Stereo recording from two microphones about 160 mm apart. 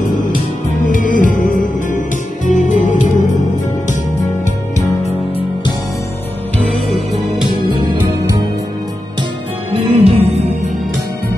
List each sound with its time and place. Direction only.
0.8 s music: 55° left (ahead or behind)
9.8 s music: 40° right (ahead or behind)